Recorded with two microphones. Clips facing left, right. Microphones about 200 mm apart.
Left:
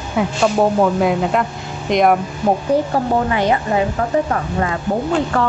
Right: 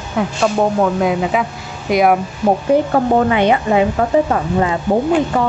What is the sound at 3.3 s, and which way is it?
Speech, 20° right (ahead or behind).